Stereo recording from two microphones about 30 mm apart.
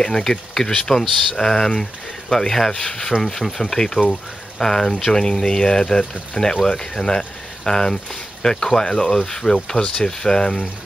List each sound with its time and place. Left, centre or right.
0.0 s speech: centre
2.7 s speech: left
3.2 s speech: centre